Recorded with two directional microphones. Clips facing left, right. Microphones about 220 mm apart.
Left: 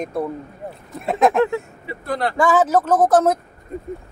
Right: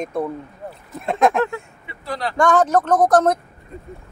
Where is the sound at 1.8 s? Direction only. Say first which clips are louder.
Left 3 dB; 50° left (ahead or behind).